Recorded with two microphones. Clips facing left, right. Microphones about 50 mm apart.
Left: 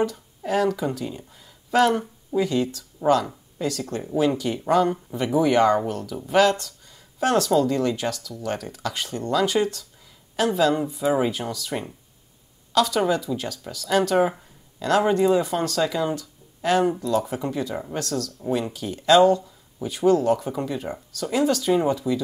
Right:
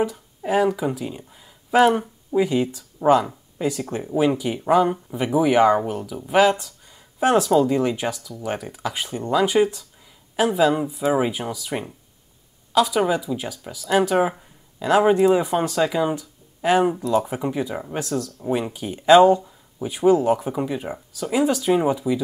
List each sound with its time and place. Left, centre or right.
0.0 s speech: centre